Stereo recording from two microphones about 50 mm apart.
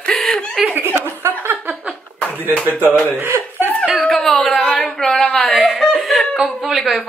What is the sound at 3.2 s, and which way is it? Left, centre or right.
Speech, right.